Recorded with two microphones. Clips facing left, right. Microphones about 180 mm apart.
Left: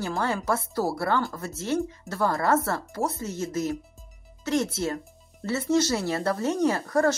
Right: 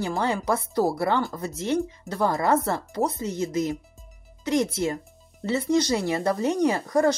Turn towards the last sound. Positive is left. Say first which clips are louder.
# right 1 dB
turn(degrees=-15)  # may be behind; listen again after turning